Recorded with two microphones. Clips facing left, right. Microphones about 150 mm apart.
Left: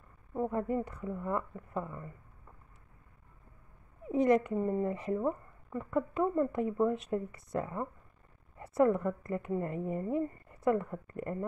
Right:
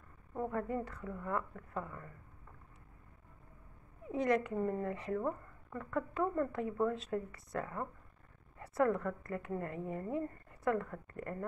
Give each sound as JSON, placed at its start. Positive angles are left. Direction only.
{"t": 0.3, "sound": "speech", "side_deg": 20}
{"t": 4.1, "sound": "speech", "side_deg": 20}